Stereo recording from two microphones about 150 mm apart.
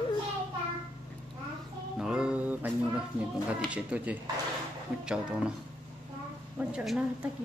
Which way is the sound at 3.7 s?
10° right (ahead or behind).